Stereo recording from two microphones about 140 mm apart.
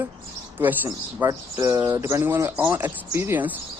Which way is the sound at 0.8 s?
20° right (ahead or behind).